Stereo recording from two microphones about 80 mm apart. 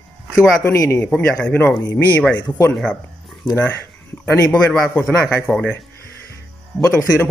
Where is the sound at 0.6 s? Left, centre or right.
Left.